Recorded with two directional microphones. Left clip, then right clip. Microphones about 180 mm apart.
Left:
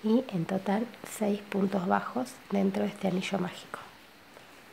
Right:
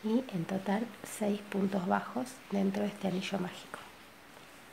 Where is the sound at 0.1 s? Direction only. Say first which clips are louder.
Left 5 dB; 20° left (ahead or behind).